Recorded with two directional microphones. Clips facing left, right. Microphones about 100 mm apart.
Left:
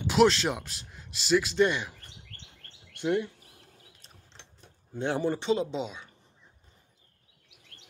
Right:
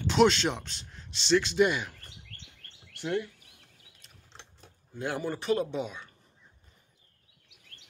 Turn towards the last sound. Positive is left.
turn(degrees=20)  # may be behind; listen again after turning